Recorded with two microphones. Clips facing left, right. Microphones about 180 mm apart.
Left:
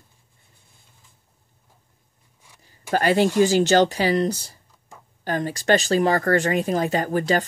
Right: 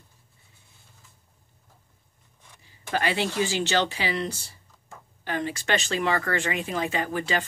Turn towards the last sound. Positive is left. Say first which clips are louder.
# left 6 dB
turn(degrees=40)  # may be behind; listen again after turning